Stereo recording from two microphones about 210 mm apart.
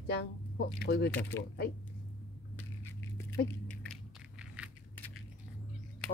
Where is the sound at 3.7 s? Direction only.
5° left (ahead or behind).